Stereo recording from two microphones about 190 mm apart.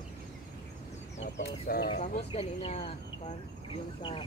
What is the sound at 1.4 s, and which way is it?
Speech, 55° left (ahead or behind).